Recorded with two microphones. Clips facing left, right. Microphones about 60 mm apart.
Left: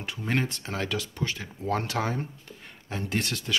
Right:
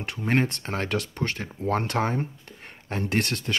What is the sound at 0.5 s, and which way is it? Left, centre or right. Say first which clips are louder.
Speech: right 3 dB; right.